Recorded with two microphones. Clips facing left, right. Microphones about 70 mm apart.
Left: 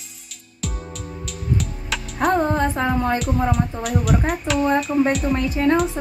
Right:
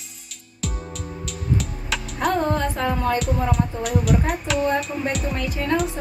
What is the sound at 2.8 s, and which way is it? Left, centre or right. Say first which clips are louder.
Speech: left 2 dB; left.